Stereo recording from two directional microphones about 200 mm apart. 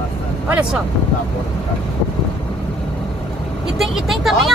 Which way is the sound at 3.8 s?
Centre (ahead or behind).